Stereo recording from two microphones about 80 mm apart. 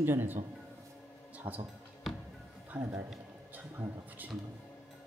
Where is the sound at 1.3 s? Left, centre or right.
Right.